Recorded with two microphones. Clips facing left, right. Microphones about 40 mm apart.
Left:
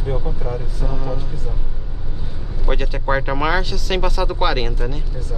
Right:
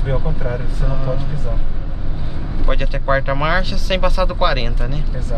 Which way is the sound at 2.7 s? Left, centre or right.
Centre.